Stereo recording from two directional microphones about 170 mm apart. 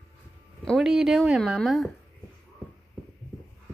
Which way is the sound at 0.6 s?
Centre (ahead or behind).